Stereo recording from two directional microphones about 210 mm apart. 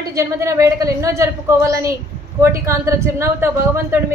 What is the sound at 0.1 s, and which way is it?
A woman's voice, 15° right (ahead or behind).